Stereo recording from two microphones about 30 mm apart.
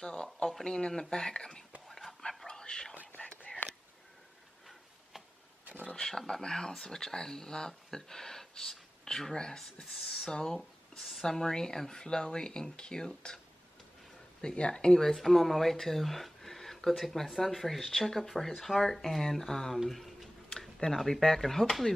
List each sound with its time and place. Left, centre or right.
0.0 s speech: left
1.9 s whispering: centre
2.4 s whispering: left
3.2 s whispering: left
6.0 s speech: centre
15.0 s speech: centre
18.3 s speech: centre
18.8 s speech: centre
19.9 s a sound: centre
20.9 s speech: centre